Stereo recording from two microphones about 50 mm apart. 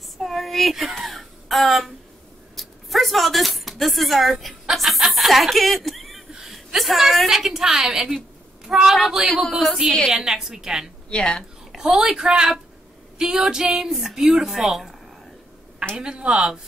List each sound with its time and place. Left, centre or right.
0.2 s a sound: centre
4.7 s a woman's voice: centre
11.1 s speech: centre
11.7 s a woman's voice: centre
16.0 s a woman's voice: centre